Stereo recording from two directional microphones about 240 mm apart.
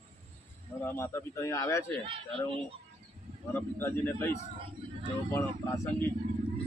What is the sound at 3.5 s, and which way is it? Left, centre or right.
A man's voice, centre.